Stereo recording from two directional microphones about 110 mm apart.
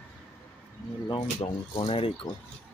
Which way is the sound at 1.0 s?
55° left (ahead or behind).